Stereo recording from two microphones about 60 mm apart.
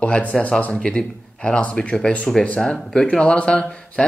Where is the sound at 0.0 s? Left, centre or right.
Centre.